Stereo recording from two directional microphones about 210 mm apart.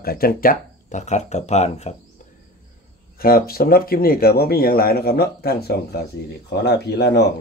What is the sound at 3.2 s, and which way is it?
Speech, 45° left (ahead or behind).